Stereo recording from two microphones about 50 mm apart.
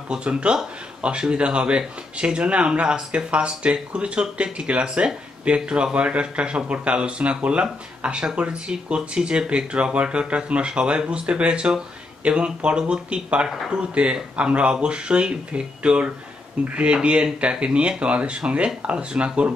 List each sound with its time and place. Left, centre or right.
0.1 s speech: centre